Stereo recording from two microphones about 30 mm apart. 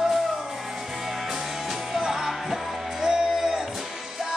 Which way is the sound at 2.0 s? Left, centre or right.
Centre.